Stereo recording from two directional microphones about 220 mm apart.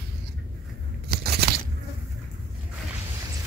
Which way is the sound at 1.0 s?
45° right (ahead or behind).